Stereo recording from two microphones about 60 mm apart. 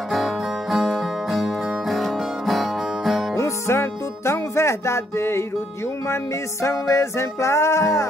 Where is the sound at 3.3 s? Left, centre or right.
Left.